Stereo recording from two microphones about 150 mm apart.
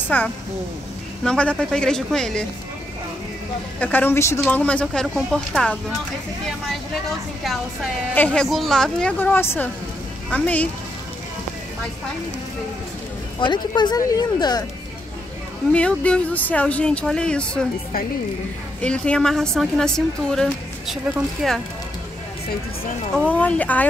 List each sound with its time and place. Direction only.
0.1 s a woman's voice: 10° left (ahead or behind)
3.8 s a woman's voice: 10° left (ahead or behind)
8.1 s speech: 10° left (ahead or behind)
13.4 s speech: 30° left (ahead or behind)
15.7 s speech: 10° left (ahead or behind)
18.8 s a woman's voice: 5° left (ahead or behind)
23.1 s speech: 10° left (ahead or behind)